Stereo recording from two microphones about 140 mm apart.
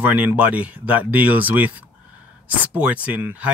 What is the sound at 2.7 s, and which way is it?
Speech, 10° right (ahead or behind).